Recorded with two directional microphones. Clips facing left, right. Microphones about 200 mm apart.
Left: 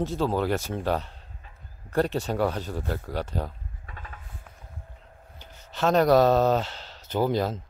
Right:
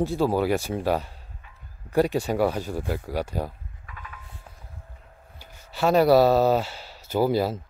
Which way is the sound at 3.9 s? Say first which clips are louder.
Right 1 dB; 35° left (ahead or behind).